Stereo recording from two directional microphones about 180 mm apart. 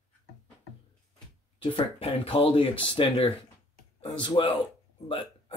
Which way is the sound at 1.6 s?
30° left (ahead or behind).